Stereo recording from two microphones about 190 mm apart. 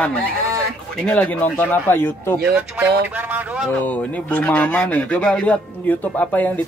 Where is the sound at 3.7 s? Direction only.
10° left (ahead or behind).